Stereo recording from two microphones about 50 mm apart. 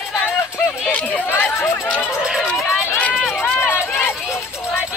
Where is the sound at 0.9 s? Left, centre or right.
Left.